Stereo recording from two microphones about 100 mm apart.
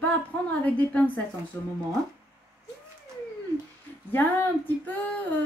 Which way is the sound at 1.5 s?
25° left (ahead or behind).